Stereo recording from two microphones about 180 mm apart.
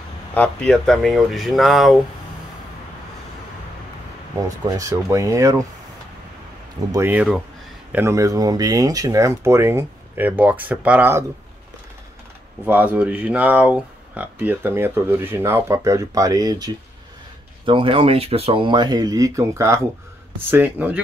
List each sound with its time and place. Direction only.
0.3 s speech: 5° left (ahead or behind)
4.6 s speech: 20° right (ahead or behind)
6.9 s speech: 10° right (ahead or behind)
12.6 s speech: 10° right (ahead or behind)